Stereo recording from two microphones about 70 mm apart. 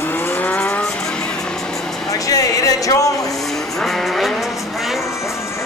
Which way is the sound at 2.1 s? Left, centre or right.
Left.